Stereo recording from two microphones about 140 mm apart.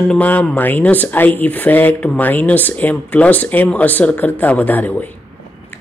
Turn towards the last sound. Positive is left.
turn(degrees=15)  # may be behind; listen again after turning